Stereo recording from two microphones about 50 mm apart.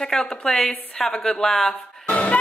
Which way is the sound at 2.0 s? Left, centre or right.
Left.